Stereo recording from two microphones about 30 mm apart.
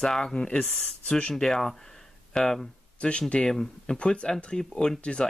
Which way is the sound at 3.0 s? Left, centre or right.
Left.